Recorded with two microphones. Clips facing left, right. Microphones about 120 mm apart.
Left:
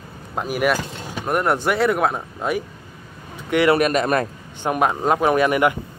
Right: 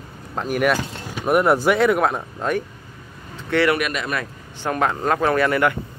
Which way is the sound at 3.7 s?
40° left (ahead or behind).